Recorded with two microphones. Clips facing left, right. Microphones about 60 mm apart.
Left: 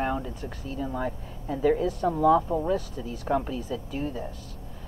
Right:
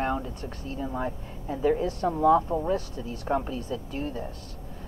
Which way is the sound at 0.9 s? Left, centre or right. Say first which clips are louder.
Even; centre.